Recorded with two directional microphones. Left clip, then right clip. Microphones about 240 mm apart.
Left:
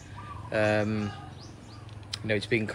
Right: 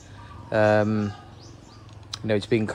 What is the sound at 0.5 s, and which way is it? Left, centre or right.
Speech, centre.